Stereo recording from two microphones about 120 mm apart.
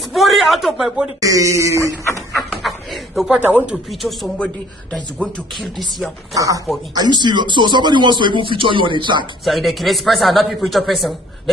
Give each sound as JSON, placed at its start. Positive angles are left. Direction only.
{"t": 0.1, "sound": "a sound", "side_deg": 0}
{"t": 1.2, "sound": "speech", "side_deg": -25}
{"t": 2.3, "sound": "dog", "side_deg": 0}
{"t": 4.9, "sound": "a man's voice", "side_deg": 0}
{"t": 6.3, "sound": "speech", "side_deg": -30}
{"t": 9.4, "sound": "a man's voice", "side_deg": 0}